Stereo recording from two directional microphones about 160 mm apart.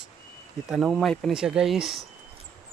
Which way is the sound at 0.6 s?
Centre (ahead or behind).